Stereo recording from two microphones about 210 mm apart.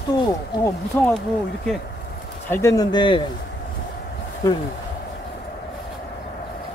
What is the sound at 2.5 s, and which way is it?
Speech, 15° left (ahead or behind).